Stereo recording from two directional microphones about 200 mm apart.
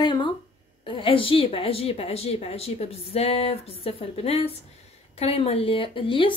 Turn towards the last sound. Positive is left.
turn(degrees=25)  # may be behind; listen again after turning